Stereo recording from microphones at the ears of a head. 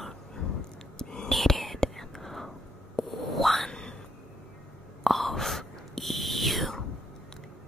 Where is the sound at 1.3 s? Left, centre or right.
Centre.